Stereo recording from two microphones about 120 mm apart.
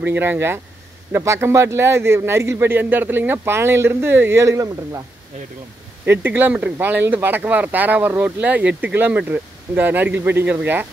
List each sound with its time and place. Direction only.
0.0 s a man's voice: 15° right (ahead or behind)
6.0 s speech: 15° right (ahead or behind)